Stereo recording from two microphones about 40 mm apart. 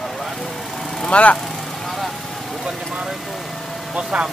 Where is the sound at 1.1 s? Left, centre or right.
Left.